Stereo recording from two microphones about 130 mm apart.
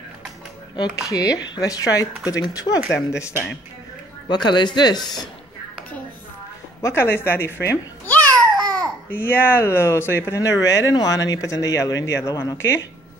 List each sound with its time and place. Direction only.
0.7 s speech: 30° left (ahead or behind)
4.3 s speech: 35° left (ahead or behind)
6.8 s speech: 20° left (ahead or behind)
8.3 s babbling: 30° right (ahead or behind)
9.1 s speech: 15° left (ahead or behind)